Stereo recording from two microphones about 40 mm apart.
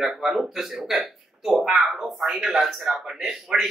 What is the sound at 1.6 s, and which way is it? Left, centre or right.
Speech, centre.